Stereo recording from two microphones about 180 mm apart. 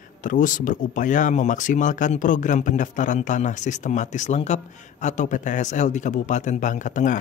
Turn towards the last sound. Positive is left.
turn(degrees=45)  # may be behind; listen again after turning